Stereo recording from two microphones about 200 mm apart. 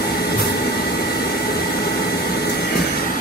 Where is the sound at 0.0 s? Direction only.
50° left (ahead or behind).